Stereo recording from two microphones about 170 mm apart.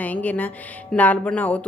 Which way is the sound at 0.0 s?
10° left (ahead or behind).